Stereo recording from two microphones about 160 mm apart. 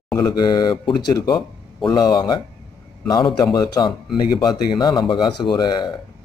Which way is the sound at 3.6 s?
25° left (ahead or behind).